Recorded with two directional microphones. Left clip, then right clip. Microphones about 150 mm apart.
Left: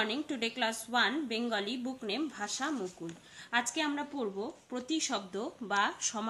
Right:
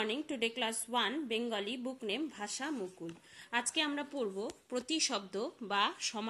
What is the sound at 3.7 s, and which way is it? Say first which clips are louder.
A woman's voice: left 1 dB; 20° right (ahead or behind).